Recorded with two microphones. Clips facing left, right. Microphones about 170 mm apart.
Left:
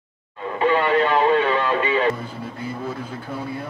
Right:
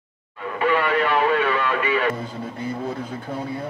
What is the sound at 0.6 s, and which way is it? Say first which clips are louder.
Speech: left 2 dB; 30° left (ahead or behind).